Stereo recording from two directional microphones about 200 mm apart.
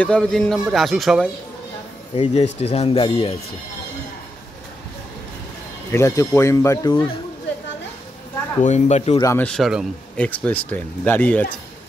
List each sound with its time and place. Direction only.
0.0 s a man's voice: 5° left (ahead or behind)
2.1 s speech: 35° left (ahead or behind)
5.9 s speech: 15° left (ahead or behind)
8.6 s speech: 35° left (ahead or behind)
9.2 s speech: 15° left (ahead or behind)
9.5 s a man's voice: centre (ahead or behind)